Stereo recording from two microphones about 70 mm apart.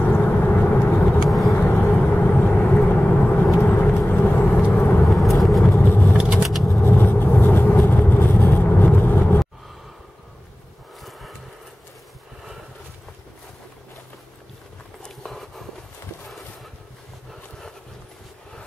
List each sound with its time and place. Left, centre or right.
0.0 s vehicle: left
5.0 s vehicle: centre
5.8 s vehicle: left
6.1 s vehicle: centre
6.8 s vehicle: left
11.1 s a sound: centre
15.0 s a sound: centre